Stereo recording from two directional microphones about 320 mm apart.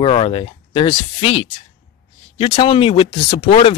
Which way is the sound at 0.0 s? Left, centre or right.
Centre.